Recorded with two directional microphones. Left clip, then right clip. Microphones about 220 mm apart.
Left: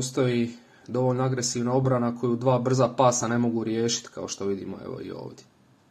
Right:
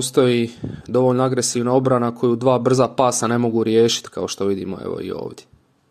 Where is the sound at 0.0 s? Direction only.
40° right (ahead or behind).